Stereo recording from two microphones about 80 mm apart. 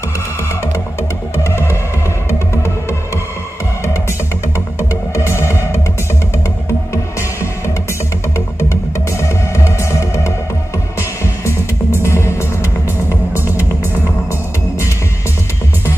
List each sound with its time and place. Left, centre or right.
1.4 s music: left
5.1 s music: left
9.8 s music: left
12.0 s music: left